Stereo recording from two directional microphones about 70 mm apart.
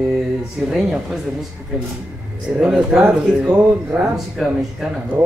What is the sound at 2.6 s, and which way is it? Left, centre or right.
Speech, centre.